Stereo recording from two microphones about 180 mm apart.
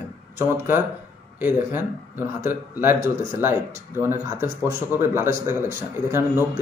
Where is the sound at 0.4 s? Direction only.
10° right (ahead or behind).